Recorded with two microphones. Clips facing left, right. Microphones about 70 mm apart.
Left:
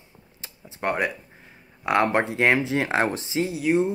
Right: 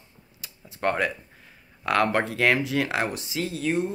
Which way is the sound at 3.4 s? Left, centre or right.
Centre.